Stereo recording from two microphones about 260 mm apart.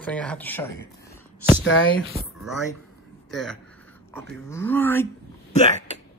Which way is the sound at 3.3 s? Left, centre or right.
Centre.